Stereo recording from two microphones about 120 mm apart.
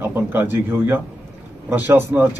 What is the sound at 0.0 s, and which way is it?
Speech, 15° right (ahead or behind).